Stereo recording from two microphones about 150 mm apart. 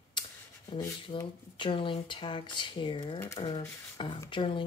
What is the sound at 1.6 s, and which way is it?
Speech, 35° left (ahead or behind).